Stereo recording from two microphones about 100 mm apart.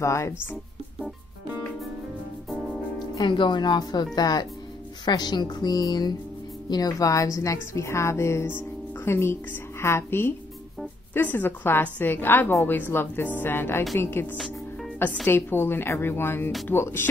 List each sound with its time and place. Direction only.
0.0 s speech: 30° left (ahead or behind)
3.0 s a woman's voice: 50° left (ahead or behind); by 17.1 s 25° left (ahead or behind)